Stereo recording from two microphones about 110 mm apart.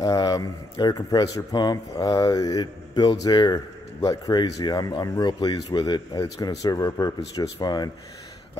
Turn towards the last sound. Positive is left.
turn(degrees=40)  # may be behind; listen again after turning